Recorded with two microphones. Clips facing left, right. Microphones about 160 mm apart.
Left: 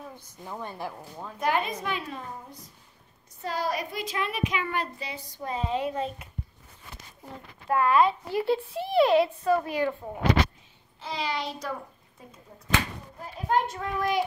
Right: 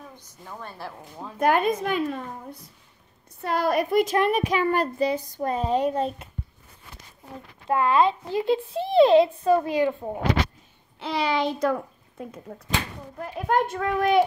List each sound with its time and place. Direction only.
0.4 s a woman's voice: 15° left (ahead or behind)
0.9 s speech: centre (ahead or behind)
1.4 s a child's voice: 50° right (ahead or behind)
7.6 s a child's voice: 25° right (ahead or behind)
11.0 s a child's voice: 70° right (ahead or behind)